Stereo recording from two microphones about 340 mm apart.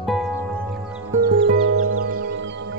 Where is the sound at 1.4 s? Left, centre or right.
Right.